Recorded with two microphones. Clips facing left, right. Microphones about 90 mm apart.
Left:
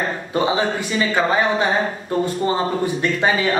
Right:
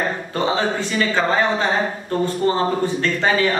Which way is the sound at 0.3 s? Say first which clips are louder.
Left 2 dB; 15° left (ahead or behind).